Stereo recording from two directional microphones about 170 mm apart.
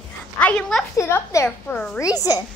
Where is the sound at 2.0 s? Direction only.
20° left (ahead or behind).